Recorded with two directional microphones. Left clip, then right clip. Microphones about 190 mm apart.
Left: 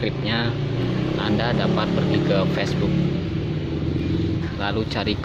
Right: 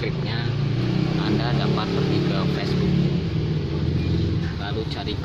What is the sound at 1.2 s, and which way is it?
Speech, 15° left (ahead or behind).